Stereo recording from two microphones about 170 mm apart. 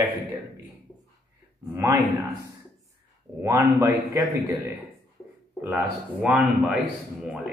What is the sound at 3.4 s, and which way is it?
Speech, 15° right (ahead or behind).